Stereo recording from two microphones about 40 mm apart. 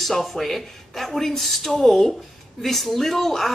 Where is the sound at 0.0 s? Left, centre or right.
Centre.